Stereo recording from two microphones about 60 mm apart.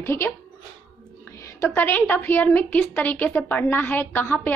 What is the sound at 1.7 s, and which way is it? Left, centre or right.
A woman's voice, left.